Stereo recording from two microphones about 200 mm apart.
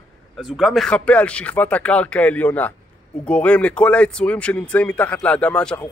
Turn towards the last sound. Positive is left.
turn(degrees=5)  # may be behind; listen again after turning